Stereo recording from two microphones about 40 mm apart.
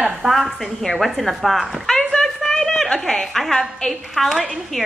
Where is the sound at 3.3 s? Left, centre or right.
Centre.